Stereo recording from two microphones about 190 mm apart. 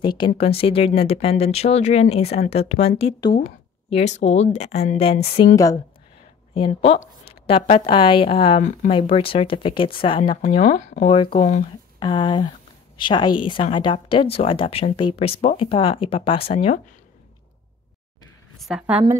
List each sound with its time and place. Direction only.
0.0 s a woman's voice: 25° left (ahead or behind)
10.6 s speech: 40° left (ahead or behind)
12.0 s a woman's voice: 25° left (ahead or behind)
18.6 s a woman's voice: 5° right (ahead or behind)